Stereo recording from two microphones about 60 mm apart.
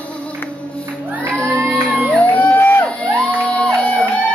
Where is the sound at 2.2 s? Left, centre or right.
Left.